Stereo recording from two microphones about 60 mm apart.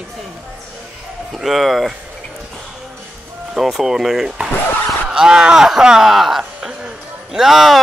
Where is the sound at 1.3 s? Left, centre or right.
Centre.